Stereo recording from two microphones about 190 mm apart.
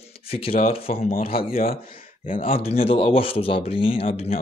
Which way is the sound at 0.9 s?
45° left (ahead or behind).